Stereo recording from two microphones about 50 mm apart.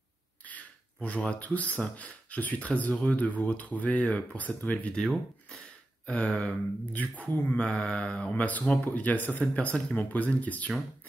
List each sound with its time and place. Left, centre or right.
1.0 s speech: left
6.0 s speech: left